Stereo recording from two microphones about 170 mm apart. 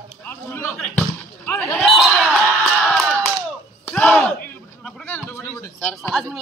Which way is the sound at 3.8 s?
10° left (ahead or behind).